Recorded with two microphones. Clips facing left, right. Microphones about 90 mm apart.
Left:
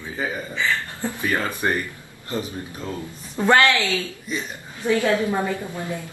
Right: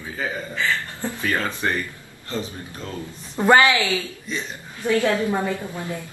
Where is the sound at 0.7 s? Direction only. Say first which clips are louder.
Left 1 dB; 20° left (ahead or behind).